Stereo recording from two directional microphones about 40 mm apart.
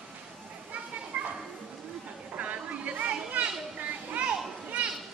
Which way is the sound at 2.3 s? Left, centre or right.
Right.